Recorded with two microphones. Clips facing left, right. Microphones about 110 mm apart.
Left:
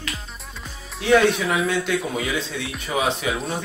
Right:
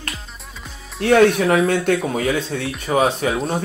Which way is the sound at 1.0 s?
50° right (ahead or behind).